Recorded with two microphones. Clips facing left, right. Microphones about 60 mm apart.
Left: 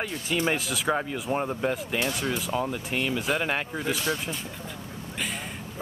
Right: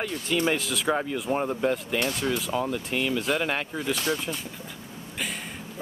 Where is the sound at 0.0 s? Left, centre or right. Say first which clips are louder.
Right 1 dB; centre.